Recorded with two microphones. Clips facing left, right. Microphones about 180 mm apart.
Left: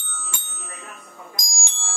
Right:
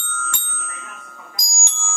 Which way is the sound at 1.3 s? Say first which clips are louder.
Right 1 dB; 20° left (ahead or behind).